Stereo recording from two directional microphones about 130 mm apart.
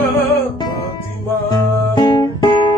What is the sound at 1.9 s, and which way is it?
Guitar, 30° left (ahead or behind).